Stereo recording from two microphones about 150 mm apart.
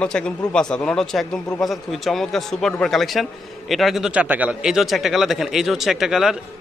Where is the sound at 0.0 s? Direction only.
5° left (ahead or behind).